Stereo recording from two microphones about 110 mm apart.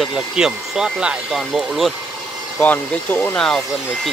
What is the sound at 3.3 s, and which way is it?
Speech, 5° left (ahead or behind).